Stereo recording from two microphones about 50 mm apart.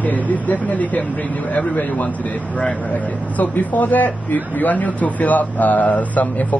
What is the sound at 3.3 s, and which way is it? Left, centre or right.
Speech, left.